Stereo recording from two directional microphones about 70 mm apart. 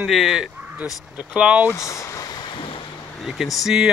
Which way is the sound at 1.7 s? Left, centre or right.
Left.